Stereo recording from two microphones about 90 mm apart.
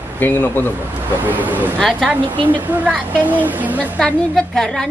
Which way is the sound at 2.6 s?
20° right (ahead or behind).